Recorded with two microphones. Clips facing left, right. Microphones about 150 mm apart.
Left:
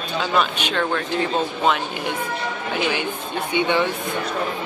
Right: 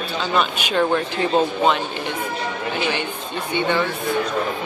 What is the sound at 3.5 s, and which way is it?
Speech, 15° left (ahead or behind).